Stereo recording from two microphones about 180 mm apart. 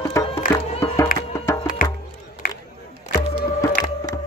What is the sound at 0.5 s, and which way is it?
Music, 30° left (ahead or behind).